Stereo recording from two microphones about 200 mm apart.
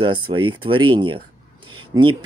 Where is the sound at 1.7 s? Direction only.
25° right (ahead or behind).